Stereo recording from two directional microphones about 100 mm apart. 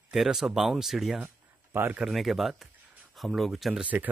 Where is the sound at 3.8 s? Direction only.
15° right (ahead or behind).